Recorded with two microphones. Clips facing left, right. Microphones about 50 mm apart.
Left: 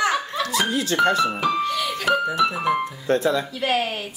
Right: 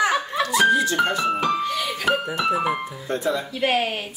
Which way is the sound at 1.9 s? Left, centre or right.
Centre.